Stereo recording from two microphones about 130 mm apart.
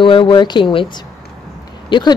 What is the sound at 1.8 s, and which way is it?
Speech, 35° left (ahead or behind).